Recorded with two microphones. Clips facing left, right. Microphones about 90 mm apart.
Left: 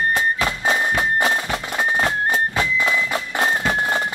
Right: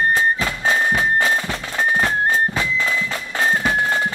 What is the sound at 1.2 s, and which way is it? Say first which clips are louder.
Music: even; 20° left (ahead or behind).